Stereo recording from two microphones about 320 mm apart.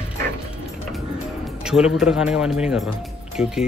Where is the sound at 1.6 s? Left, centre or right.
Centre.